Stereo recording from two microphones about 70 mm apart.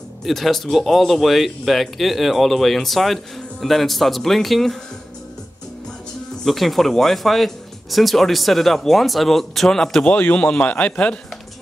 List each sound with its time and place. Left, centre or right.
0.2 s speech: centre
6.4 s speech: centre
10.1 s a man's voice: left